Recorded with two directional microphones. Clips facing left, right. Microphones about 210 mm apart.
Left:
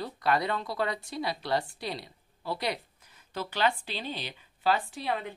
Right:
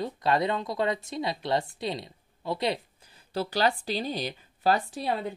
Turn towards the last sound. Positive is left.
turn(degrees=-35)  # may be behind; listen again after turning